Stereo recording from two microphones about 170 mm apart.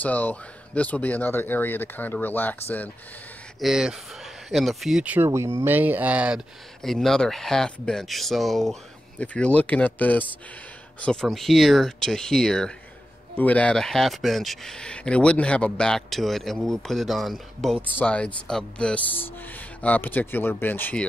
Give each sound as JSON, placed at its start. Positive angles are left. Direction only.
{"t": 0.0, "sound": "speech", "side_deg": 10}
{"t": 3.5, "sound": "speech", "side_deg": 0}